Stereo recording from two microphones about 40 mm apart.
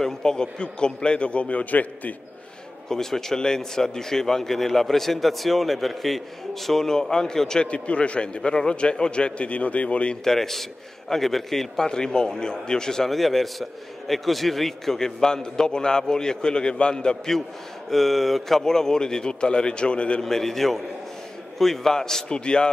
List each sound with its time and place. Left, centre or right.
0.0 s a man's voice: centre; by 2.1 s left
2.9 s a man's voice: centre
7.6 s a man's voice: left
8.4 s a man's voice: centre
10.2 s a man's voice: centre
11.9 s a man's voice: centre
17.8 s speech: centre
18.6 s a man's voice: centre
20.2 s a man's voice: centre